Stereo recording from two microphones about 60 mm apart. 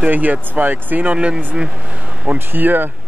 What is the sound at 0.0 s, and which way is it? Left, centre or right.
Speech, right.